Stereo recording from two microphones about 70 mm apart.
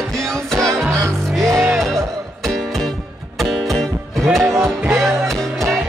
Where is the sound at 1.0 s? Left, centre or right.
Right.